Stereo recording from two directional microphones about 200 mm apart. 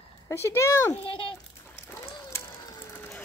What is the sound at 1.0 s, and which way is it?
Speech, 25° left (ahead or behind).